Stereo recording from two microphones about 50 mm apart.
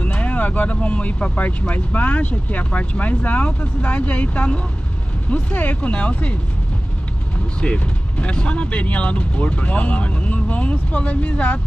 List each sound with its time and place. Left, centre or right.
0.0 s speech: left
7.6 s speech: left